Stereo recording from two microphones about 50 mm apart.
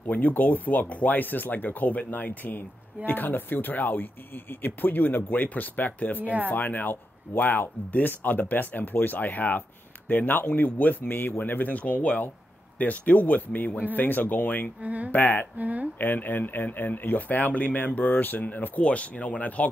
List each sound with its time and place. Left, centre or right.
0.1 s speech: left
14.8 s speech: right
15.0 s speech: left
15.5 s speech: right
16.0 s speech: left